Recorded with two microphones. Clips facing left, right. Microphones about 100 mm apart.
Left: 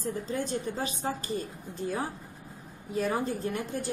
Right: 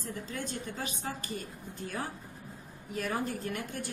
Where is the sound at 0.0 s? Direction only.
35° left (ahead or behind).